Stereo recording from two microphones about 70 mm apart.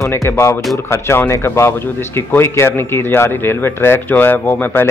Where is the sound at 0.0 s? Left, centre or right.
Left.